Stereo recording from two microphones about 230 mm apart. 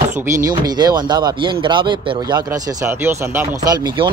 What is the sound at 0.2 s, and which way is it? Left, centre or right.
Speech, centre.